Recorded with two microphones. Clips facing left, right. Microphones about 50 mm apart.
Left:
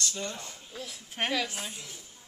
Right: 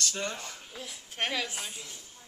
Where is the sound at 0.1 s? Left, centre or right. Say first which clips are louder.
Right 2 dB; right.